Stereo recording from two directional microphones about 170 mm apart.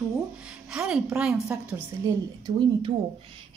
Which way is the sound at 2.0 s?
20° right (ahead or behind).